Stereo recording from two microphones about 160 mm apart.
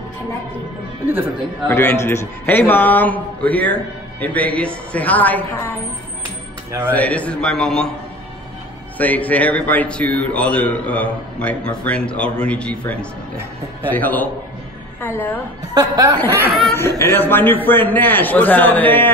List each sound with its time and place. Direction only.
1.7 s a man's voice: 15° left (ahead or behind)
6.9 s a man's voice: 10° left (ahead or behind)
8.9 s a man's voice: 10° left (ahead or behind)
13.9 s a man's voice: 10° left (ahead or behind)
15.7 s speech: 25° right (ahead or behind)
16.7 s a man's voice: 15° left (ahead or behind)